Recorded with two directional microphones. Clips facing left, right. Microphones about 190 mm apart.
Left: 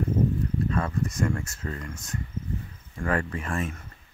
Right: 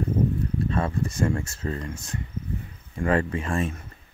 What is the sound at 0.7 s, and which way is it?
Speech, 30° right (ahead or behind).